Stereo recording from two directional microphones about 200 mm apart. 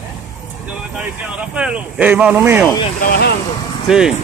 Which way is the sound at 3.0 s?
50° left (ahead or behind).